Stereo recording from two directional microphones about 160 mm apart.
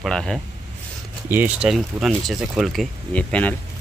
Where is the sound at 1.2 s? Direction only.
10° right (ahead or behind).